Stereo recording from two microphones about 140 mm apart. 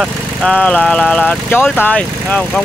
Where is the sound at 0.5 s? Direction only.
10° left (ahead or behind).